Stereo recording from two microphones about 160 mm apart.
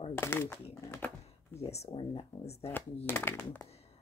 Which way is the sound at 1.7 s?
40° left (ahead or behind).